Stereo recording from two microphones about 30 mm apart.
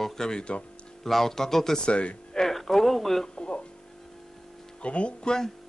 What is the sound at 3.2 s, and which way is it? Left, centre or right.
Music, left.